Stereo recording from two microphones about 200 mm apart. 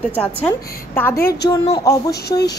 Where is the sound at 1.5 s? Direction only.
20° left (ahead or behind).